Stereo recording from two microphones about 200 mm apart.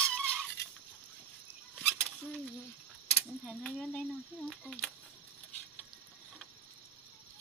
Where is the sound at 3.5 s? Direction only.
5° left (ahead or behind).